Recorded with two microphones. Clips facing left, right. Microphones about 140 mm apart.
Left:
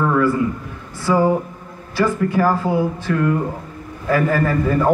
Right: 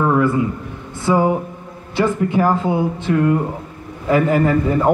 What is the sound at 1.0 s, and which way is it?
A man's voice, 20° right (ahead or behind).